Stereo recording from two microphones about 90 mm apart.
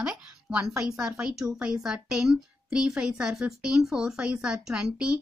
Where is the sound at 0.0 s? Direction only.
10° right (ahead or behind).